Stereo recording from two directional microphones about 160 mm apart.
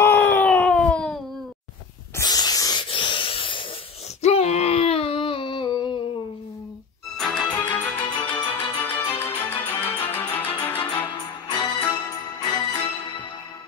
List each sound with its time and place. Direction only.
0.0 s a sound: 15° left (ahead or behind)
2.1 s spray: 25° left (ahead or behind)
2.9 s wheeze: 30° left (ahead or behind)
4.2 s a sound: 40° left (ahead or behind)
7.2 s music: 5° left (ahead or behind)
11.1 s music: 30° left (ahead or behind)